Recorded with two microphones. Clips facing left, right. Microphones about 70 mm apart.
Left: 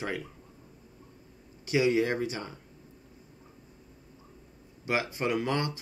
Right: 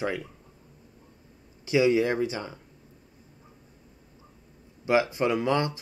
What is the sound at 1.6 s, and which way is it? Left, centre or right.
Speech, right.